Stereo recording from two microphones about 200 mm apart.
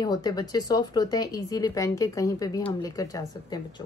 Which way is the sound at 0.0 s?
20° left (ahead or behind).